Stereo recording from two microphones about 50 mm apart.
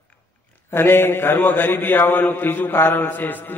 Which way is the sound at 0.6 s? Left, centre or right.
Left.